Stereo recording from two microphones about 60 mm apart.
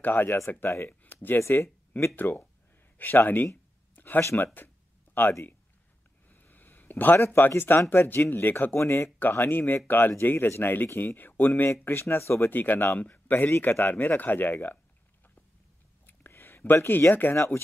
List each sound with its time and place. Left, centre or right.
0.0 s speech: left
1.5 s speech: left
2.1 s speech: left
3.9 s a sound: left
5.2 s speech: left
6.2 s a sound: left
7.3 s speech: left
8.7 s speech: left
9.2 s speech: left
16.1 s a sound: left
17.1 s speech: left